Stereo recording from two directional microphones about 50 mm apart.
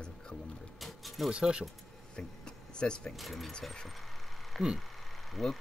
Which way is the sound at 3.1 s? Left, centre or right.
Centre.